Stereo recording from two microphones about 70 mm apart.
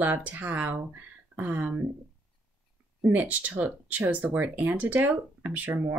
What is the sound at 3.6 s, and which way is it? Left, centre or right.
Speech, right.